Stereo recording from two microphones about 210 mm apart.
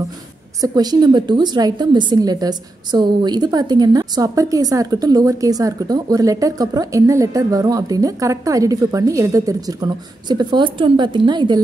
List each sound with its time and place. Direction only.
0.6 s a woman's voice: 20° right (ahead or behind)